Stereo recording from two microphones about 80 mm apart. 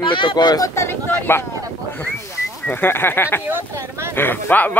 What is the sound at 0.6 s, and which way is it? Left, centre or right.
Speech, left.